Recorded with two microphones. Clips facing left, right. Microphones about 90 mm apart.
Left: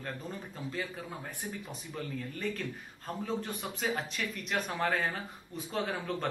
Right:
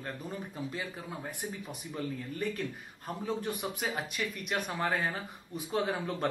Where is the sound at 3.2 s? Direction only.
15° right (ahead or behind).